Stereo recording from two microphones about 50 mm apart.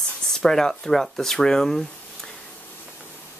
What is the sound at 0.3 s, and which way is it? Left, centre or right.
Speech, centre.